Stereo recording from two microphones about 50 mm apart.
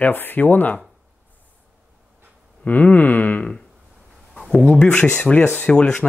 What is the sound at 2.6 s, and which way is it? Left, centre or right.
Speech, left.